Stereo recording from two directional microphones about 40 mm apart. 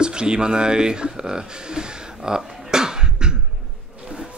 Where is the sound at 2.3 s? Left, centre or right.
Centre.